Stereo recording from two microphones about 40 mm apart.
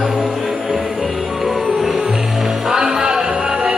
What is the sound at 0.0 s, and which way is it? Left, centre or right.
Music, centre.